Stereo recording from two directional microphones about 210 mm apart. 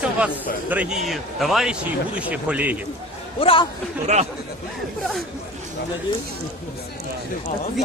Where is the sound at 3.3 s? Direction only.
25° left (ahead or behind).